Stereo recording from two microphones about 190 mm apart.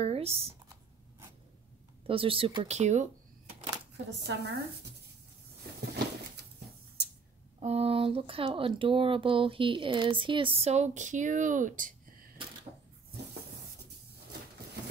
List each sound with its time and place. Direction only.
0.0 s speech: 30° right (ahead or behind)
2.0 s speech: 30° right (ahead or behind)
3.9 s speech: 65° right (ahead or behind)
7.6 s speech: 30° right (ahead or behind)